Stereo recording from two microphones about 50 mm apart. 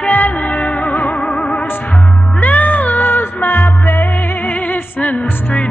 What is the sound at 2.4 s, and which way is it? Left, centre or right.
Music, left.